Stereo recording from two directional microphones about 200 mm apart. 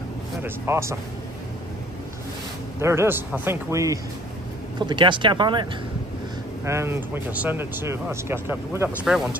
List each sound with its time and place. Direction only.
0.4 s speech: 15° right (ahead or behind)
2.8 s speech: 15° right (ahead or behind)